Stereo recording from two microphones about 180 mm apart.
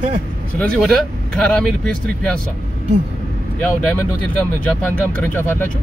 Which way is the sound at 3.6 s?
5° left (ahead or behind).